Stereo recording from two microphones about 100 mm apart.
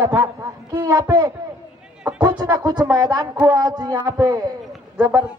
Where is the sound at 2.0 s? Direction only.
15° right (ahead or behind).